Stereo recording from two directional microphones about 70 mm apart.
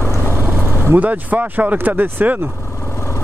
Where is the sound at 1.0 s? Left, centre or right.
Right.